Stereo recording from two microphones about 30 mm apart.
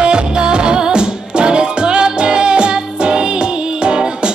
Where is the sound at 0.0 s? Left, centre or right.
Right.